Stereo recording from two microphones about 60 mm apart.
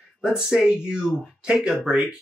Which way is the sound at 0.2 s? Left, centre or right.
Centre.